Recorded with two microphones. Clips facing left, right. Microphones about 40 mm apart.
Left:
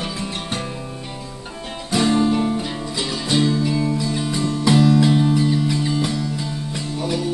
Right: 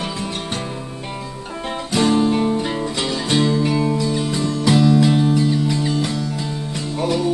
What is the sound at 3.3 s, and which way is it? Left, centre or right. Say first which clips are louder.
Music: right 1 dB; centre.